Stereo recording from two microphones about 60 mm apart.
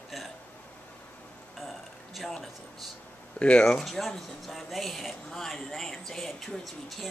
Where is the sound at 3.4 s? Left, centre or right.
Centre.